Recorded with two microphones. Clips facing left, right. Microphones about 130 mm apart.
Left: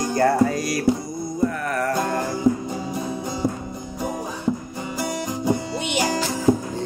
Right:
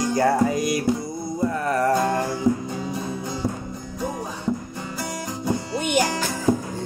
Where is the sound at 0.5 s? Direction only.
20° right (ahead or behind).